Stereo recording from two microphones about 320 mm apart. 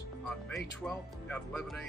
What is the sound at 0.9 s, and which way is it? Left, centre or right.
Speech, centre.